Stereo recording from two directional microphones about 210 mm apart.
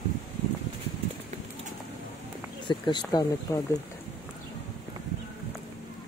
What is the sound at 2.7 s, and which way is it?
Speech, 20° left (ahead or behind).